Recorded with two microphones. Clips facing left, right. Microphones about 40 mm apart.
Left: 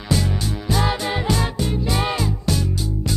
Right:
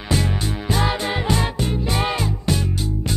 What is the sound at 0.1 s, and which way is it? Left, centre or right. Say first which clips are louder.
Music: even; right.